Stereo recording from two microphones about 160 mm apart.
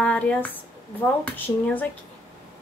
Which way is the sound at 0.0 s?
10° left (ahead or behind).